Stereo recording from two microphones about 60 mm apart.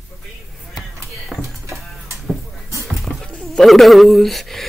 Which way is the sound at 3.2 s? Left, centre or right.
Centre.